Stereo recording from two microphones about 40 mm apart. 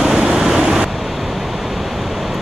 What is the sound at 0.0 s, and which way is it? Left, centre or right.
Waves, centre.